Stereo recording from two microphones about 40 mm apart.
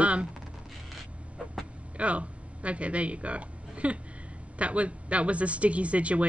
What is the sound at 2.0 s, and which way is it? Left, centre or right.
Speech, right.